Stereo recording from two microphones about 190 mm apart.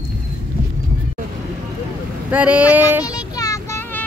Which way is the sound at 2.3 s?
5° right (ahead or behind).